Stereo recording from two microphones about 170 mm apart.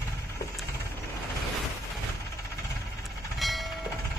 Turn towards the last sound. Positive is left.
turn(degrees=0)  # may be behind; listen again after turning